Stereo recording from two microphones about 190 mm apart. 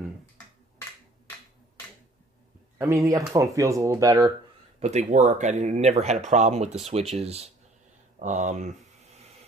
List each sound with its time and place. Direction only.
2.8 s speech: 15° right (ahead or behind)
4.7 s speech: 35° right (ahead or behind)